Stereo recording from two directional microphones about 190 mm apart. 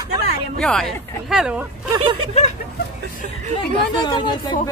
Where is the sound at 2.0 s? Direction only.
25° right (ahead or behind).